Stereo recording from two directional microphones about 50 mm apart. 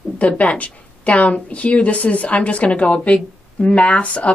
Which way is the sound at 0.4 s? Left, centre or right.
Left.